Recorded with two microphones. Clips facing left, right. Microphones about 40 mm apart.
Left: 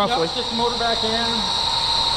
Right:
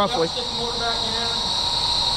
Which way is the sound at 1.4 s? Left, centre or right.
Left.